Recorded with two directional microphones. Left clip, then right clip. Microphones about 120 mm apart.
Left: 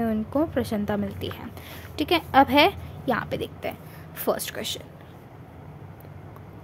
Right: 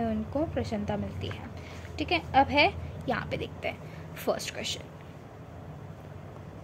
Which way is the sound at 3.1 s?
30° left (ahead or behind).